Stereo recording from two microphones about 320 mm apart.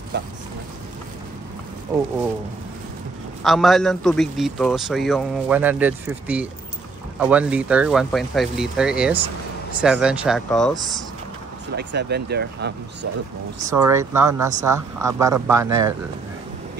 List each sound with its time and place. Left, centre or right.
3.4 s a man's voice: centre
11.7 s speech: right
13.7 s speech: centre